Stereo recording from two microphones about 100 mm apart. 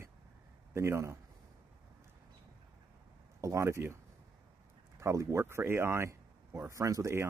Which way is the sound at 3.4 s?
30° right (ahead or behind).